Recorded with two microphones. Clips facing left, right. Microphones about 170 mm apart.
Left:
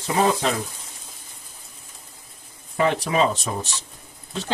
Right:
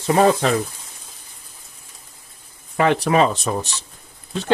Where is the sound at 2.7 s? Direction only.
65° right (ahead or behind).